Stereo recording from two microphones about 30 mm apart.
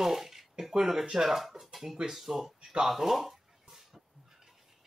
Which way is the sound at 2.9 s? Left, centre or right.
Centre.